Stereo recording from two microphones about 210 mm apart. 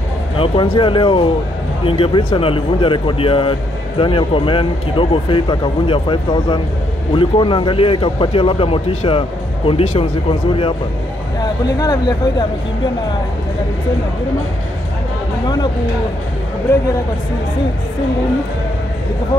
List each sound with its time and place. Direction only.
0.4 s speech: 25° left (ahead or behind)
11.4 s speech: 20° left (ahead or behind)
15.4 s speech: 20° left (ahead or behind)